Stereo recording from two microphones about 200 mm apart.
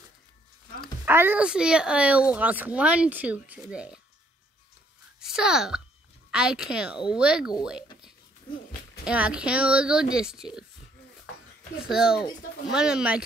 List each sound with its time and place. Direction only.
1.0 s speech: 10° right (ahead or behind)
5.2 s speech: 5° right (ahead or behind)
9.0 s speech: 5° right (ahead or behind)
11.9 s speech: 5° right (ahead or behind)